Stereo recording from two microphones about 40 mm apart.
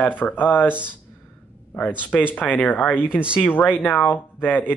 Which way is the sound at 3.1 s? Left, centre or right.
Right.